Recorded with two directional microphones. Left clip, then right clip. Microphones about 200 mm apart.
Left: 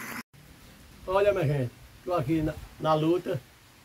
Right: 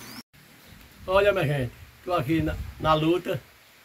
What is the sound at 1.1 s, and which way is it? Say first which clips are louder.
Speech: right 3 dB; centre (ahead or behind).